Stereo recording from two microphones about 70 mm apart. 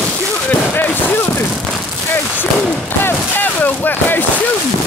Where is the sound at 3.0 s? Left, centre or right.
Left.